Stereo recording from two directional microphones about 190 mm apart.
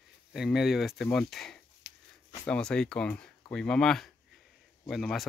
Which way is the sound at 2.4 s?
5° left (ahead or behind).